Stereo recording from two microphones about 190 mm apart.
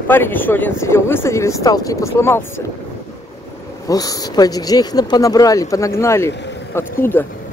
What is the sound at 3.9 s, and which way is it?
Speech, 20° left (ahead or behind).